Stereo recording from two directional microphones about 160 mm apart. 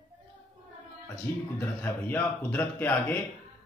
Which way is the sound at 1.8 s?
10° left (ahead or behind).